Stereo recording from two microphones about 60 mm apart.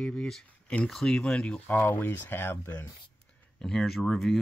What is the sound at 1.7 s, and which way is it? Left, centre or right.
Speech, left.